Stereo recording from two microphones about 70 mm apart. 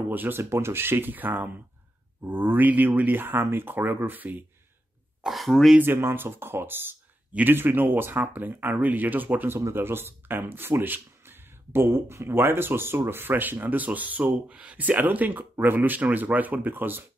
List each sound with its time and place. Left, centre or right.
0.1 s speech: right
0.4 s speech: right
5.2 s speech: centre
5.8 s speech: right
9.6 s speech: right